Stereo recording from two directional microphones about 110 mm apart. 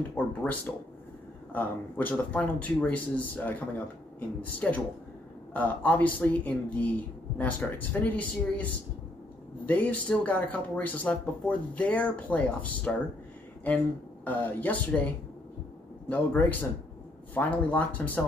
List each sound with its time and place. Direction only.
0.1 s speech: 15° left (ahead or behind)
9.7 s speech: 15° left (ahead or behind)
14.2 s speech: 15° left (ahead or behind)